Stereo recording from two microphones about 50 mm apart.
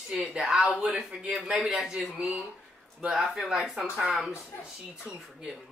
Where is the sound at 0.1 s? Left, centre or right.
Centre.